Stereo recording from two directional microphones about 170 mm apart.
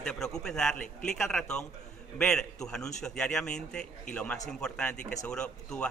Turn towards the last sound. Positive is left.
turn(degrees=5)  # may be behind; listen again after turning